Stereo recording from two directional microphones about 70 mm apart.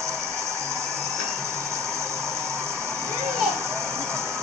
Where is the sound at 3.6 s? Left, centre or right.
Right.